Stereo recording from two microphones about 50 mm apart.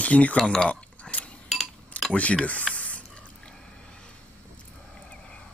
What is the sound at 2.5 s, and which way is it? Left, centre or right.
Spray, left.